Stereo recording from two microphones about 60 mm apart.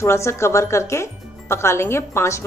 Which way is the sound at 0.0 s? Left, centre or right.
Left.